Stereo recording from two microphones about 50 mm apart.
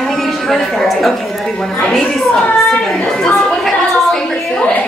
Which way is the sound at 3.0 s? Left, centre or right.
Centre.